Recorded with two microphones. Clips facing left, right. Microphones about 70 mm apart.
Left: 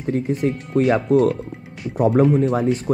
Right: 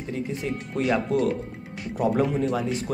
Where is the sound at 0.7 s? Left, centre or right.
Left.